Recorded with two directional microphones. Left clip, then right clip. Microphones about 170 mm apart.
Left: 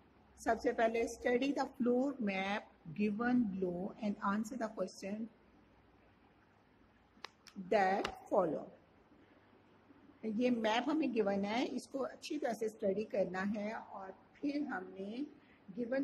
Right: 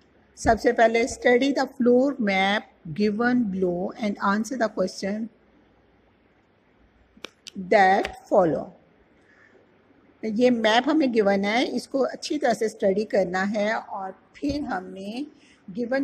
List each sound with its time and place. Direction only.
0.4 s a woman's voice: 25° right (ahead or behind)
7.6 s a woman's voice: 30° right (ahead or behind)
10.2 s a woman's voice: 30° right (ahead or behind)